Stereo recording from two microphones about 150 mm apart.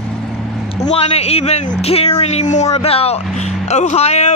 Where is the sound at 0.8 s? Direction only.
45° left (ahead or behind).